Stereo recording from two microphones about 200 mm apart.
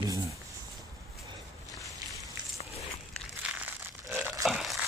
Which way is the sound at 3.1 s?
5° right (ahead or behind).